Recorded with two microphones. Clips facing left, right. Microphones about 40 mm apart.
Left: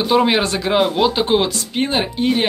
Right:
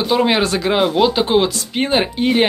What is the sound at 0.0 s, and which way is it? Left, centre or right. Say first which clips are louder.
Speech: even; centre.